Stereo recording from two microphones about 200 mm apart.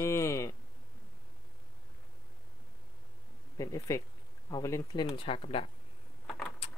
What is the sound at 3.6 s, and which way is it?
Speech, 15° left (ahead or behind).